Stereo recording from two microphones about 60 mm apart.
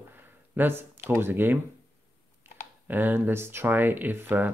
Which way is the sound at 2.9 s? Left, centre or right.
Right.